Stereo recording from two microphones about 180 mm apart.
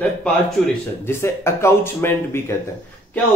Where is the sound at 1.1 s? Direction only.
15° left (ahead or behind).